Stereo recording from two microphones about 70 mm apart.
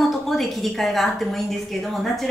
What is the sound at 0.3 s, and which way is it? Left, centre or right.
A woman's voice, centre.